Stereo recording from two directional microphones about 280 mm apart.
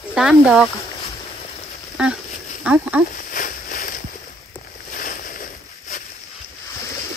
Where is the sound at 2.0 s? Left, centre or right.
Centre.